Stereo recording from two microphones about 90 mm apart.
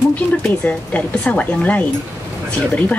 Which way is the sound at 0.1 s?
15° left (ahead or behind).